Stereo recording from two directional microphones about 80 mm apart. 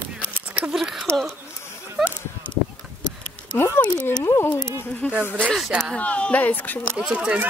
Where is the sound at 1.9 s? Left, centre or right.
Centre.